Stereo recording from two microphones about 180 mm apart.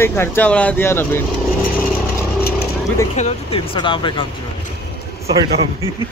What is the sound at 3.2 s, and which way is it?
Speech, 35° left (ahead or behind).